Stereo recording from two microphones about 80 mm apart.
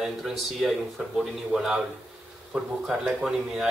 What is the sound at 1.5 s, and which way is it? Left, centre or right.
A man's voice, centre.